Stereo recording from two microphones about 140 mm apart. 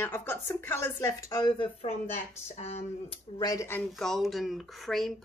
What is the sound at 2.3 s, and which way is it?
Speech, 55° left (ahead or behind).